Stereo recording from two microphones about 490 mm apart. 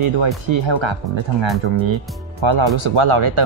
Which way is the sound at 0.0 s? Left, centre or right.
Right.